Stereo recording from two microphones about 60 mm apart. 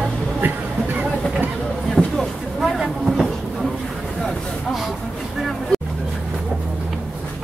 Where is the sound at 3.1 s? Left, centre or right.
Centre.